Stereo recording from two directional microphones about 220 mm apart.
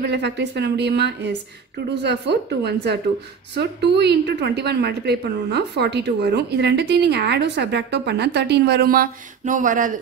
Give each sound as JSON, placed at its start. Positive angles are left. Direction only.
{"t": 0.0, "sound": "a woman's voice", "side_deg": -50}